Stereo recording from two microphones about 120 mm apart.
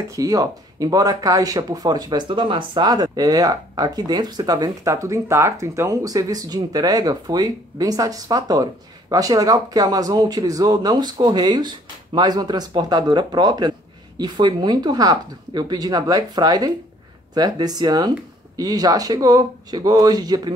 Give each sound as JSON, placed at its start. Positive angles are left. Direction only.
{"t": 0.1, "sound": "speech", "side_deg": -30}